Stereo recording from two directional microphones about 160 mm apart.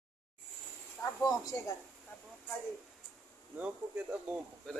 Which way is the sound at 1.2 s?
20° left (ahead or behind).